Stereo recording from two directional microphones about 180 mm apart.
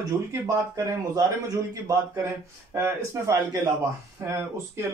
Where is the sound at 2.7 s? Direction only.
15° right (ahead or behind).